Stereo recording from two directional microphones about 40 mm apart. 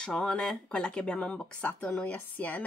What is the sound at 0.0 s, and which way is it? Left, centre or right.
A woman's voice, left.